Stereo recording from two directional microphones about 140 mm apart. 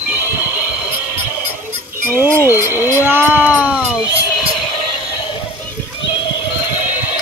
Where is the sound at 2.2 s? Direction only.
15° right (ahead or behind).